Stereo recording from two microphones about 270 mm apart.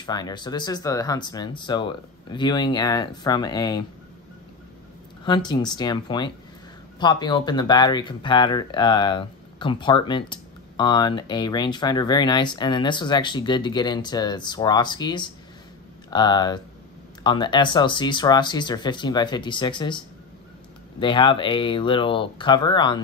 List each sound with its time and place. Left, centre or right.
0.0 s speech: centre
5.5 s speech: centre
21.0 s speech: centre